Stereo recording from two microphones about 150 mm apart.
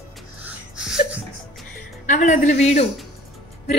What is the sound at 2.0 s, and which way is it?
Speech, 55° left (ahead or behind).